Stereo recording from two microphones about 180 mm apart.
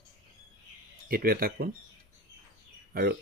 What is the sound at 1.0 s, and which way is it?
Speech, 55° right (ahead or behind).